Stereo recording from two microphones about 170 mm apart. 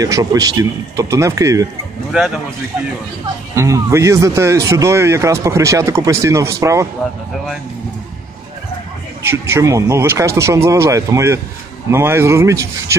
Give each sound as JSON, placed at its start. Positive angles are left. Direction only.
{"t": 0.0, "sound": "a man's voice", "side_deg": -20}
{"t": 3.5, "sound": "speech", "side_deg": -20}
{"t": 9.2, "sound": "speech", "side_deg": -15}